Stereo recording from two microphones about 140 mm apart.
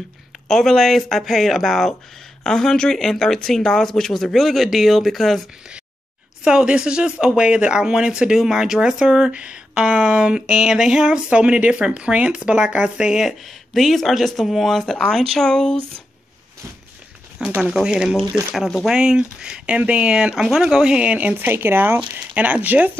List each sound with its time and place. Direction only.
0.5 s speech: centre (ahead or behind)
17.5 s speech: 5° right (ahead or behind)